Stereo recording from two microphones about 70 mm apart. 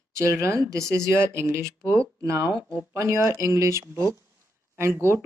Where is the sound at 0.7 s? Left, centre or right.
Right.